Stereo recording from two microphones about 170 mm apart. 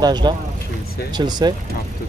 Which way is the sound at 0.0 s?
25° right (ahead or behind).